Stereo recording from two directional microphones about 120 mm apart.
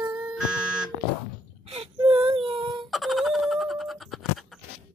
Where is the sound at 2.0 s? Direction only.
45° right (ahead or behind).